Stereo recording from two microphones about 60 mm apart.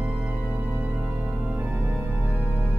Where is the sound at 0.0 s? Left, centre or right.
Right.